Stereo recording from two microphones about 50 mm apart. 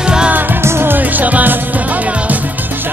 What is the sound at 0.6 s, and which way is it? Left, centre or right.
Music, right.